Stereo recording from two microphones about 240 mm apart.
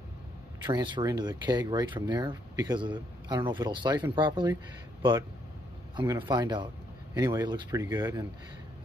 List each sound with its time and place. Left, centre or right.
0.7 s speech: centre
5.9 s speech: centre